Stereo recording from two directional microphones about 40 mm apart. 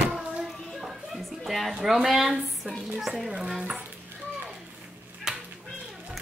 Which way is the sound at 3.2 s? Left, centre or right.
Centre.